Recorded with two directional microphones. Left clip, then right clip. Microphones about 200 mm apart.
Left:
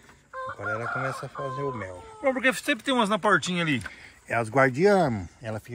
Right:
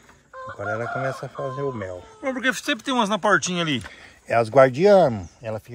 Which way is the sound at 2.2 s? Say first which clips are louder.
Even; 10° right (ahead or behind).